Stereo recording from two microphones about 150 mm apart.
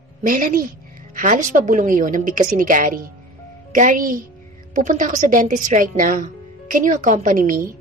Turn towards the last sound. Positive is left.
turn(degrees=-65)  # may be behind; listen again after turning